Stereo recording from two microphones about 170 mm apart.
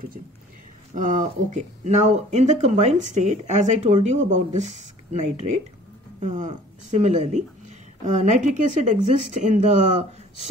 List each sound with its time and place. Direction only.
0.9 s speech: 45° right (ahead or behind)